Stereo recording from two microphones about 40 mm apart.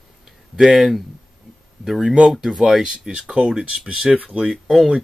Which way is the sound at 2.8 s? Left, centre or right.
Centre.